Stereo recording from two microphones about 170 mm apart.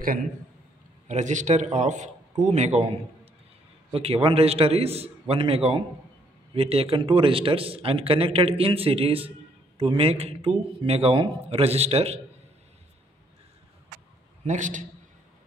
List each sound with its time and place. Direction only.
1.0 s a man's voice: 45° right (ahead or behind)
3.9 s a man's voice: 35° right (ahead or behind)
14.4 s a man's voice: 45° right (ahead or behind)